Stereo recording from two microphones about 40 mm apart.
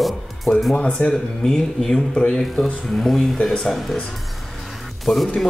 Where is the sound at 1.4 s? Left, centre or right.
Centre.